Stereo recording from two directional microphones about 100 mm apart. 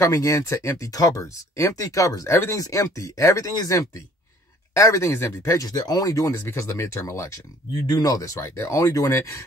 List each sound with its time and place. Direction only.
0.0 s speech: 35° left (ahead or behind)